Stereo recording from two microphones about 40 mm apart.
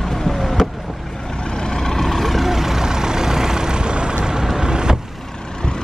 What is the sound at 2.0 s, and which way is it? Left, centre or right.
Vehicle, centre.